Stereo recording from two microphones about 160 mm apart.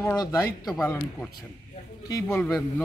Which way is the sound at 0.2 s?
20° left (ahead or behind).